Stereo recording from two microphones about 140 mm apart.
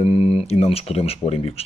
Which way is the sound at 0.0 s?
45° left (ahead or behind).